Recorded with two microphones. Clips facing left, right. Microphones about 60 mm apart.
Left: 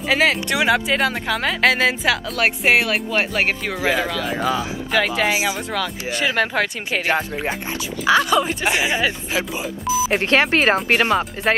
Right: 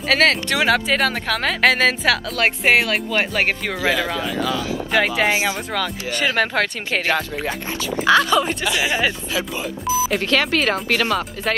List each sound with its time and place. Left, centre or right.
0.1 s speech: centre
3.4 s speech: centre
3.8 s speech: left
4.9 s speech: centre
5.3 s speech: centre
8.1 s speech: centre
8.6 s speech: left
10.0 s speech: left